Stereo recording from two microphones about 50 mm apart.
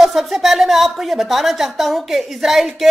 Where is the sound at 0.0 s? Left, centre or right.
Centre.